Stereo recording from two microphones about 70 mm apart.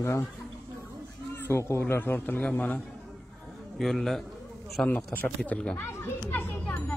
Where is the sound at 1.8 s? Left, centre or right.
Left.